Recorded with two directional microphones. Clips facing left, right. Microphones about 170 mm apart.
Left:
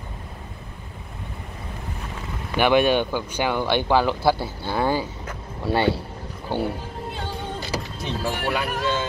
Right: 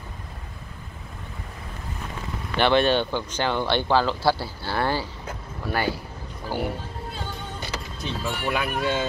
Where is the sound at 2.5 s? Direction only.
10° left (ahead or behind).